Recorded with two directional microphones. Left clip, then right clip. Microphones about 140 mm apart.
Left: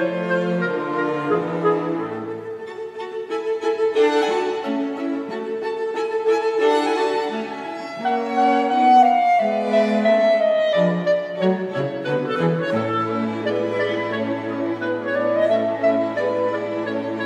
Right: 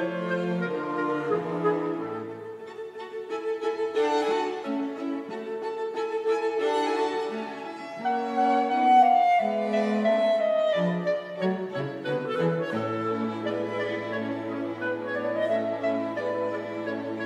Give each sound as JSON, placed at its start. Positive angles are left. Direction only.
{"t": 0.0, "sound": "music", "side_deg": 5}
{"t": 3.6, "sound": "music", "side_deg": 15}
{"t": 5.9, "sound": "music", "side_deg": 15}
{"t": 12.3, "sound": "brass instrument", "side_deg": 5}
{"t": 15.3, "sound": "music", "side_deg": 5}